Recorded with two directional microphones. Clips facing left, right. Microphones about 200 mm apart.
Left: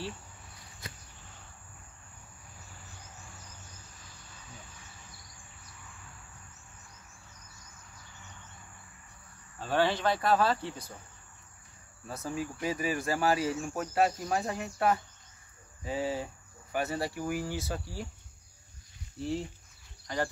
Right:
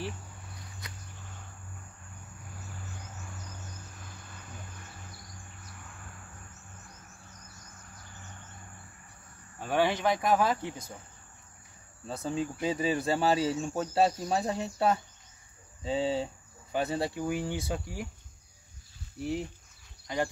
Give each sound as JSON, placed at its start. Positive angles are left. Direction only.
{"t": 3.9, "sound": "bird", "side_deg": -55}
{"t": 8.0, "sound": "bird", "side_deg": -45}
{"t": 9.6, "sound": "speech", "side_deg": -15}
{"t": 12.2, "sound": "speech", "side_deg": -25}
{"t": 19.1, "sound": "speech", "side_deg": -15}